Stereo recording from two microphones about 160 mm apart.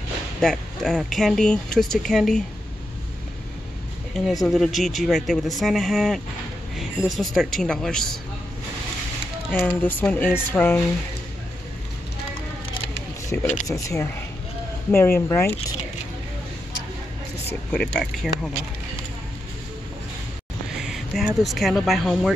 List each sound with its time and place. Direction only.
0.4 s speech: 5° left (ahead or behind)
4.3 s speech: centre (ahead or behind)
9.5 s speech: 10° left (ahead or behind)
13.3 s speech: 10° left (ahead or behind)
13.7 s speech: 20° left (ahead or behind)
17.5 s speech: 10° left (ahead or behind)
20.7 s speech: centre (ahead or behind)